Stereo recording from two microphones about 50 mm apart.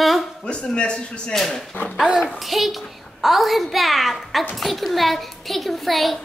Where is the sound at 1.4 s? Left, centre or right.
Centre.